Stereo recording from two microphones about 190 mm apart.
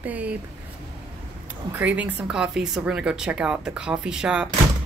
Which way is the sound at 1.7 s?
10° right (ahead or behind).